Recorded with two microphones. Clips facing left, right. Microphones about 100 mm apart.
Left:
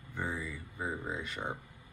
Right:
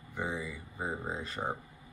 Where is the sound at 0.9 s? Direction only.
35° right (ahead or behind).